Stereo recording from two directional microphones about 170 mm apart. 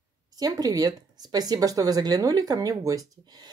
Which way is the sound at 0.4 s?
20° right (ahead or behind).